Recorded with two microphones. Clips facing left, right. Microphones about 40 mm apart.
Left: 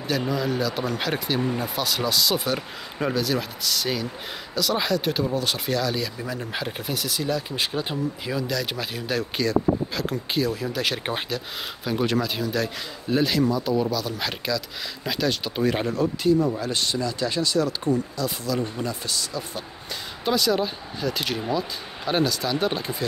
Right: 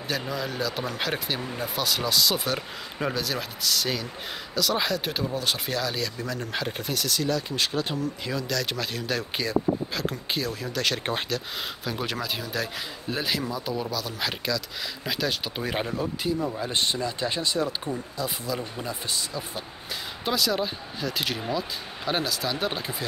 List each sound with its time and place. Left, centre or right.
0.1 s speech: centre
6.1 s speech: centre
9.4 s speech: centre
16.6 s speech: right
20.2 s speech: centre